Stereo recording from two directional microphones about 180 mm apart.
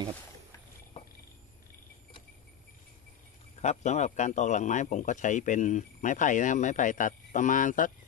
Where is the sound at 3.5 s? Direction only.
40° left (ahead or behind).